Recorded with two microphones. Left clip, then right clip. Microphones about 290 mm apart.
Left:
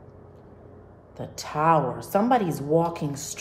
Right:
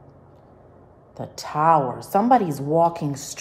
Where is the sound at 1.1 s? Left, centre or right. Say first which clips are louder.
Right 3 dB; right.